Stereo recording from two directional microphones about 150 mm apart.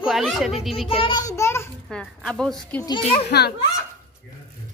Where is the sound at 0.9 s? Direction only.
35° left (ahead or behind).